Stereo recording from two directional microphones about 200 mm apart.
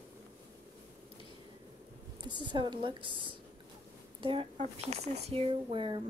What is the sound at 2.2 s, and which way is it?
Speech, 20° right (ahead or behind).